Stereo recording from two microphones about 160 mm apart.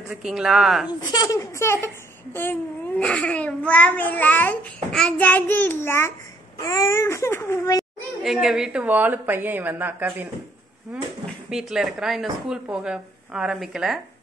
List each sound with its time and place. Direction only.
0.1 s speech: 5° right (ahead or behind)
0.8 s speech: 25° left (ahead or behind)
3.0 s a child's voice: 5° left (ahead or behind)
8.2 s a woman's voice: 5° right (ahead or behind)
11.5 s speech: 5° right (ahead or behind)